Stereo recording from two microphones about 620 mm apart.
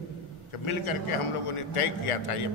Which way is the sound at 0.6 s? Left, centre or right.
Left.